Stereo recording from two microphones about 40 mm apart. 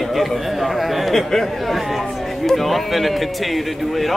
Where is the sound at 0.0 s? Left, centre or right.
Centre.